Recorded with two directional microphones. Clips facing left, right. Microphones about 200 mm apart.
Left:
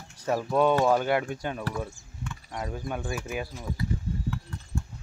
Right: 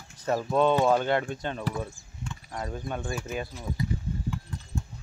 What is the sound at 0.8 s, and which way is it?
Speech, 10° left (ahead or behind).